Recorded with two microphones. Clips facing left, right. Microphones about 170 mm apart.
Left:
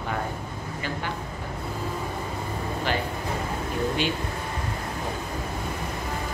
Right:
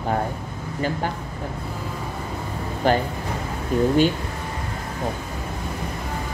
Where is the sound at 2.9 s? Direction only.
45° right (ahead or behind).